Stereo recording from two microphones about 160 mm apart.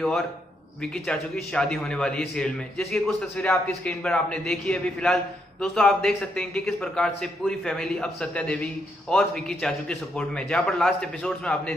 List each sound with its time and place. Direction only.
1.0 s a man's voice: 5° left (ahead or behind)